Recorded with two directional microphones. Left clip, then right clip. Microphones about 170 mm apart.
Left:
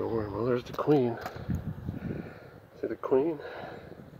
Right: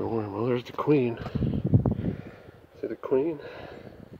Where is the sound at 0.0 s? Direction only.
40° right (ahead or behind).